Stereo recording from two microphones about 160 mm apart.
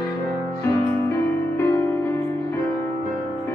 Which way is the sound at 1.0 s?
15° left (ahead or behind).